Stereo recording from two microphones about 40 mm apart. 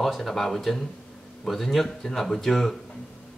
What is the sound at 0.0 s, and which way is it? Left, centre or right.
A man's voice, centre.